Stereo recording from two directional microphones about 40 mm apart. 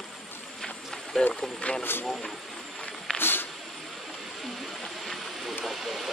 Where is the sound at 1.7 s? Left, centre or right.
Left.